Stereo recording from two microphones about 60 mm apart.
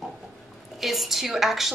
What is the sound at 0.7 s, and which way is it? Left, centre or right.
Speech, centre.